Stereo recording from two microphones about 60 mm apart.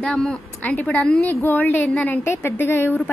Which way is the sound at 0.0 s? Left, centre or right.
Centre.